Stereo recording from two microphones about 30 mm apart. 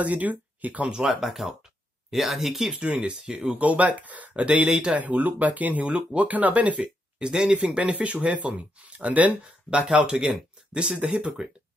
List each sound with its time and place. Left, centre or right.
0.0 s speech: right
1.0 s speech: centre
2.8 s speech: right
3.5 s speech: right
4.4 s speech: right
4.9 s speech: right
6.8 s speech: right
9.9 s speech: right